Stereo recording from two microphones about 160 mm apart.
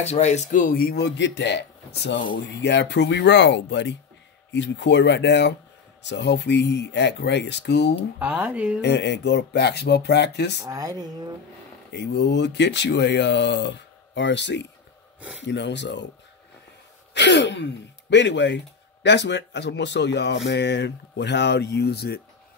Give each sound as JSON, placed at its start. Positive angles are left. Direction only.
{"t": 0.0, "sound": "speech", "side_deg": 45}
{"t": 8.2, "sound": "speech", "side_deg": -10}
{"t": 8.8, "sound": "speech", "side_deg": 90}
{"t": 10.6, "sound": "speech", "side_deg": -20}
{"t": 11.9, "sound": "speech", "side_deg": 90}
{"t": 17.1, "sound": "a sound", "side_deg": 90}
{"t": 18.1, "sound": "speech", "side_deg": 90}